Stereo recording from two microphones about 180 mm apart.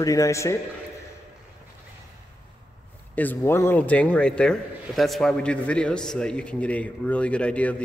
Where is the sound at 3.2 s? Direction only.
10° left (ahead or behind).